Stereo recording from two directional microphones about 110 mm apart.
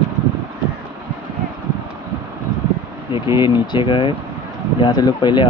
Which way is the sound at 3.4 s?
45° left (ahead or behind).